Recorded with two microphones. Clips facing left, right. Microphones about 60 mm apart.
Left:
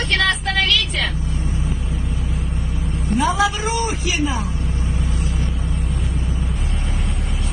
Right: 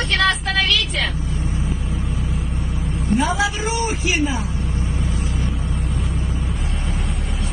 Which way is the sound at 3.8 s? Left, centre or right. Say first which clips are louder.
Right 1 dB; right.